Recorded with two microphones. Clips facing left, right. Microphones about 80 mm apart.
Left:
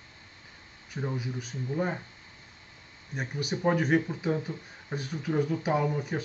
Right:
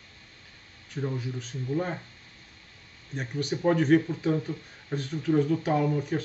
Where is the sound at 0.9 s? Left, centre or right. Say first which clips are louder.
Right 1 dB; centre.